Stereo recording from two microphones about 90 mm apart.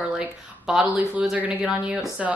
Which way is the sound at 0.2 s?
15° right (ahead or behind).